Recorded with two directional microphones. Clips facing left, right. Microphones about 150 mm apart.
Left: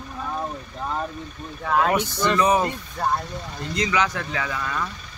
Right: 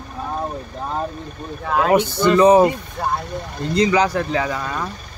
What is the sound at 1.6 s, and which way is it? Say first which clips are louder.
Speech: right 2 dB; centre (ahead or behind).